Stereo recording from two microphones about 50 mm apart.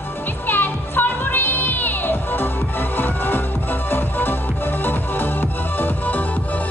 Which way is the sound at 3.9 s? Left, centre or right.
Left.